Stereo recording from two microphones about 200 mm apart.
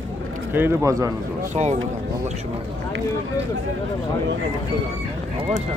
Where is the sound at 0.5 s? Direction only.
10° right (ahead or behind).